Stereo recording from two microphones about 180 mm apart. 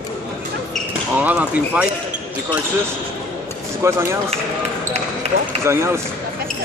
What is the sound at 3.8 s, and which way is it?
Speech, 15° right (ahead or behind).